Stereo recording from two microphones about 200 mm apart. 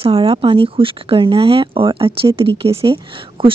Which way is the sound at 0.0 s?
30° right (ahead or behind).